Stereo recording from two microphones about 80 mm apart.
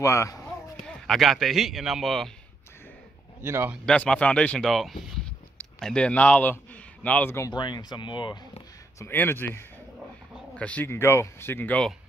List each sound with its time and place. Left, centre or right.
0.0 s speech: left
0.8 s a man's voice: centre
3.4 s speech: right
3.8 s speech: centre
4.6 s a man's voice: centre; by 7.3 s left
7.5 s speech: left
9.0 s speech: left
10.5 s speech: centre
10.9 s speech: left